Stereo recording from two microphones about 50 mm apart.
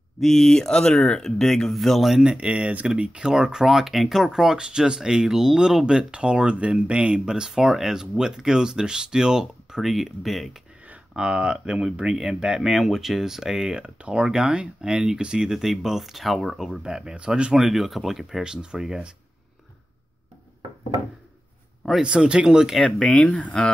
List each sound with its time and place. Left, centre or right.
0.2 s speech: centre
2.2 s speech: right; by 10.5 s centre
11.1 s speech: centre
13.7 s speech: right
17.5 s speech: centre
18.4 s speech: centre
22.0 s speech: centre
22.8 s speech: centre